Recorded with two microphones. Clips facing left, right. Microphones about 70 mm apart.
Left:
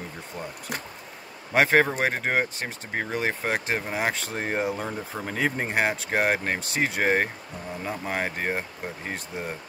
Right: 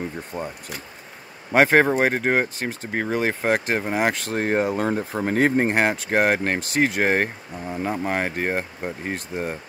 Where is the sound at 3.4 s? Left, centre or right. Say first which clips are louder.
Right 5 dB; right.